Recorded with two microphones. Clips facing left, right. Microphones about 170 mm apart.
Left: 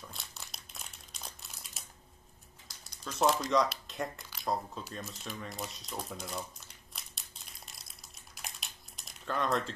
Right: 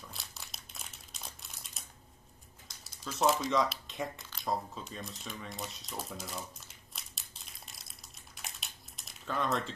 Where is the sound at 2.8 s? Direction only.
Centre (ahead or behind).